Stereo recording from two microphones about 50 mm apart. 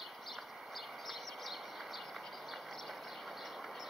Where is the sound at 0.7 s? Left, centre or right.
Centre.